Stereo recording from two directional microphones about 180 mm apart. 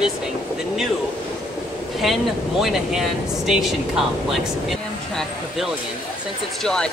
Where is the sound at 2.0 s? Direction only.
Centre (ahead or behind).